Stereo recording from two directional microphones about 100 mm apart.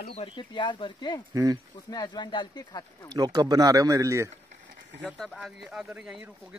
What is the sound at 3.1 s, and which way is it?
Speech, 40° right (ahead or behind).